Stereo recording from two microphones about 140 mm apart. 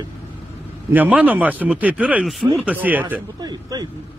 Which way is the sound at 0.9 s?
10° right (ahead or behind).